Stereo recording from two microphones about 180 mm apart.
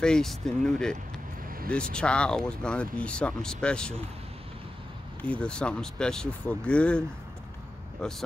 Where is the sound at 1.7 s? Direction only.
5° left (ahead or behind).